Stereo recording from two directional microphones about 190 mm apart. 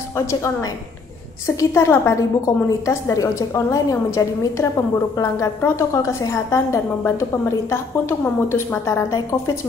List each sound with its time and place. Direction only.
0.1 s a woman's voice: 15° left (ahead or behind)